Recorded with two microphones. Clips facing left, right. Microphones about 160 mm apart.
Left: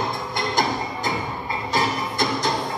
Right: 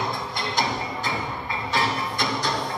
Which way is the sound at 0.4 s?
45° left (ahead or behind).